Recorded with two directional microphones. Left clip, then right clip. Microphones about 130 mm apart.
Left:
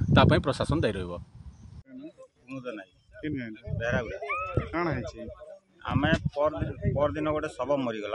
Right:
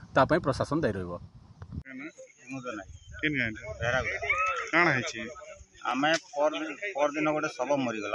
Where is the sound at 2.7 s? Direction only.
15° left (ahead or behind).